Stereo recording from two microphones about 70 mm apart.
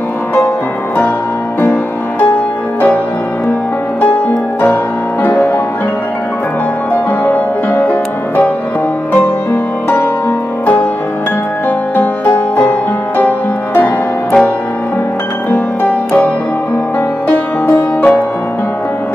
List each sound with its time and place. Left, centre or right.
1.6 s music: left
5.2 s music: left
6.9 s music: left
9.1 s music: left
13.7 s music: left
17.3 s music: left